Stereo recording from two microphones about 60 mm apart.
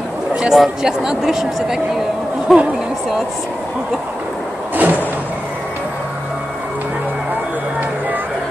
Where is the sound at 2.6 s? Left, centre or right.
Centre.